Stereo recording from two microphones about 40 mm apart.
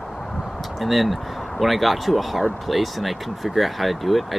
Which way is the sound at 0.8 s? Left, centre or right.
Centre.